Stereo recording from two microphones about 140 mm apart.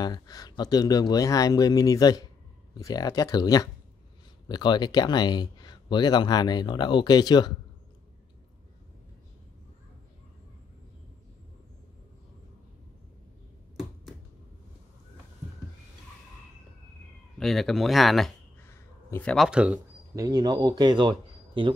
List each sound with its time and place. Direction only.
0.0 s speech: 25° left (ahead or behind)
17.4 s speech: centre (ahead or behind)
18.6 s crow: 15° left (ahead or behind)
19.3 s speech: 5° right (ahead or behind)
20.2 s speech: 25° right (ahead or behind)